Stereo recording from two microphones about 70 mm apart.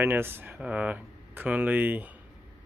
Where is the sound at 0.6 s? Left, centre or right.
Centre.